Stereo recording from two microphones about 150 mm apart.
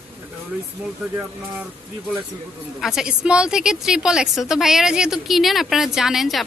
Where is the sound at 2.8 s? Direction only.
5° right (ahead or behind).